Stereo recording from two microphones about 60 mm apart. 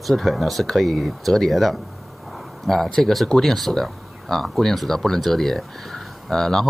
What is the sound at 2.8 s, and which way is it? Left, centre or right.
Speech, centre.